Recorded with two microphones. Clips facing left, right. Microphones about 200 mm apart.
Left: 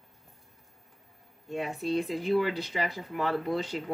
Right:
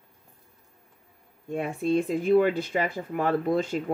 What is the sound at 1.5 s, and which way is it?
A woman's voice, 50° right (ahead or behind).